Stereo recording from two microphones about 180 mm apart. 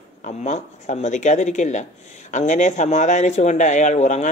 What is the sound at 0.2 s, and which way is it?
Speech, 40° left (ahead or behind).